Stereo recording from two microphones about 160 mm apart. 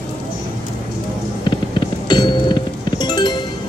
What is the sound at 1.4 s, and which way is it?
Music, 30° left (ahead or behind).